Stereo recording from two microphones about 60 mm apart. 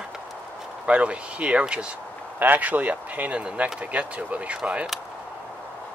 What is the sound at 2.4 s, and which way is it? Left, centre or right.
Speech, right.